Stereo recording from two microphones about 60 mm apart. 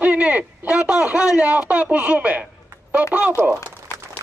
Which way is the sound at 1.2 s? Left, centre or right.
Centre.